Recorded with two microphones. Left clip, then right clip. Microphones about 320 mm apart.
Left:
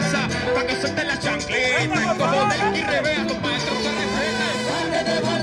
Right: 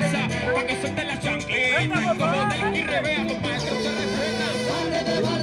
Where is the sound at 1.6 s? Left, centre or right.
Left.